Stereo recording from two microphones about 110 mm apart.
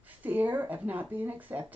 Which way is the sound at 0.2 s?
15° right (ahead or behind).